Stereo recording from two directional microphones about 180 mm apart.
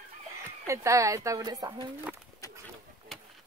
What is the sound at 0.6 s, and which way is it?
Speech, 15° right (ahead or behind).